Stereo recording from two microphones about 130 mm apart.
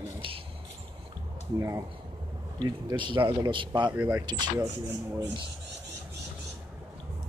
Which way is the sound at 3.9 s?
10° right (ahead or behind).